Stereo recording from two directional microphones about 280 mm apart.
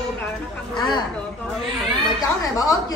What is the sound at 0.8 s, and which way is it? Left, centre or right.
Speech, centre.